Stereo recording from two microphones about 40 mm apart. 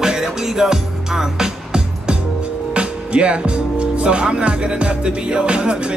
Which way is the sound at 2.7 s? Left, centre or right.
Right.